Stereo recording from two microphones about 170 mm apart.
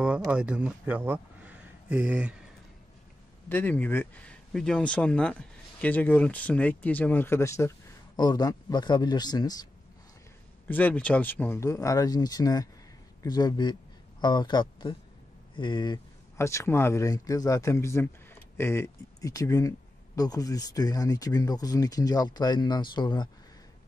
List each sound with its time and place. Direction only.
0.3 s speech: 5° right (ahead or behind)
3.4 s speech: 10° left (ahead or behind)
10.7 s speech: 10° left (ahead or behind); by 16.0 s 25° left (ahead or behind)
16.3 s speech: 15° left (ahead or behind)